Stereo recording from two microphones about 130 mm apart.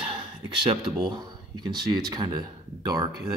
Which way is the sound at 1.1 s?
35° right (ahead or behind).